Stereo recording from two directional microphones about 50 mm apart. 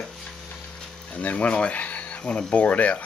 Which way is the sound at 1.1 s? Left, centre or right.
Left.